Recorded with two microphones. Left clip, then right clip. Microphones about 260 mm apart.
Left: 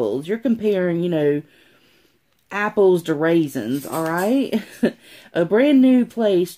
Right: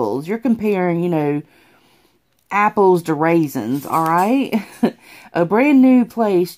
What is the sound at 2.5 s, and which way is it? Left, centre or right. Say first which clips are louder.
Speech: right 3 dB; right.